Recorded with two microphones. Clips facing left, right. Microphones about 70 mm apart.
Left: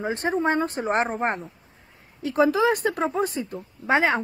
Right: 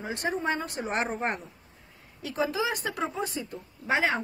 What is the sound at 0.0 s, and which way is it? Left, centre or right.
Speech, left.